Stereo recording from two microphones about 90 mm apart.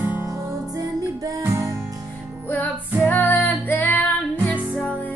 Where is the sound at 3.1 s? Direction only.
20° left (ahead or behind).